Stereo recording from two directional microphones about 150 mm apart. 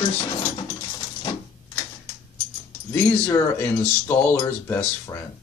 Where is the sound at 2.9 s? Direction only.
15° left (ahead or behind).